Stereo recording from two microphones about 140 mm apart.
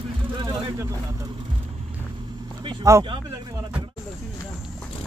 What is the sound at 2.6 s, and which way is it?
Vehicle, 35° right (ahead or behind).